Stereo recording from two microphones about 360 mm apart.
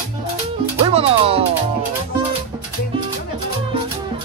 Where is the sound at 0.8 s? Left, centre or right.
Centre.